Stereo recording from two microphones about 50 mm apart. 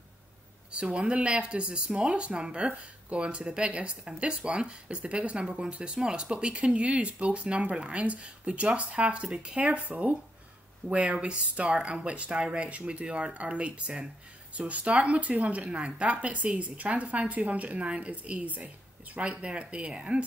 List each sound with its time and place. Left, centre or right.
0.7 s speech: right